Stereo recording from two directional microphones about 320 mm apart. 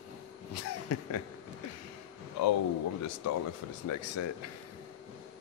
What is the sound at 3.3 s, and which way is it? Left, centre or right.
Speech, left.